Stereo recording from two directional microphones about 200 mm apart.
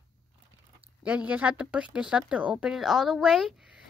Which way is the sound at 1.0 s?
5° right (ahead or behind).